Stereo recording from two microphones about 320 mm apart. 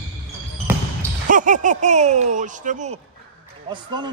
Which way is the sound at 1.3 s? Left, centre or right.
Right.